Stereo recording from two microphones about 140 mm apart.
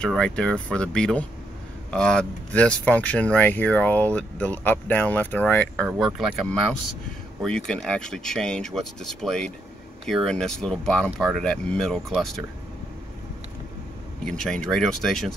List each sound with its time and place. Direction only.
0.0 s speech: 5° left (ahead or behind)
5.9 s speech: centre (ahead or behind)
14.2 s speech: 5° left (ahead or behind)